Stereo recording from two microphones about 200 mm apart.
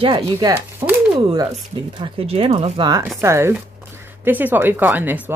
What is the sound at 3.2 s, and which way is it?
Speech, 15° right (ahead or behind).